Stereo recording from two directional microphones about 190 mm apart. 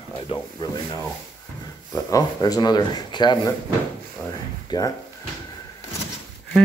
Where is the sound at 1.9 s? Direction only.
20° left (ahead or behind).